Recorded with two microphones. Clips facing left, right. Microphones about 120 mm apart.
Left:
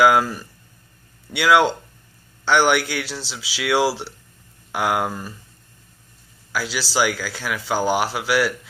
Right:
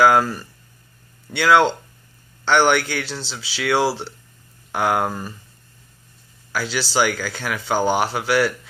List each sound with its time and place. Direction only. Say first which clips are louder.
0.0 s speech: right 1 dB; 10° left (ahead or behind)
6.5 s speech: right 2 dB; 5° left (ahead or behind)